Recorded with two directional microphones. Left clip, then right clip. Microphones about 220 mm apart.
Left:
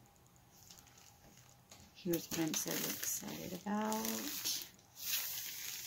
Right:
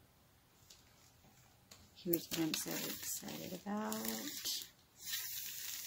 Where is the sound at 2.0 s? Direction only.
5° right (ahead or behind).